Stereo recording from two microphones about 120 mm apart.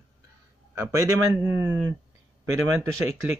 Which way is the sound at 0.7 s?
20° right (ahead or behind).